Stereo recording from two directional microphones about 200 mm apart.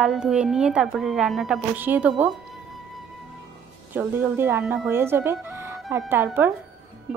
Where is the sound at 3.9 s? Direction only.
10° right (ahead or behind).